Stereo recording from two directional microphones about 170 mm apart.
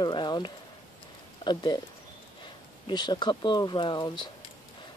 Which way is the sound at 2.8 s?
25° left (ahead or behind).